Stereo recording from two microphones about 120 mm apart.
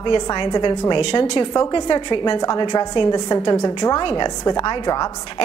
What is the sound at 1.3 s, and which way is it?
A woman's voice, 30° left (ahead or behind).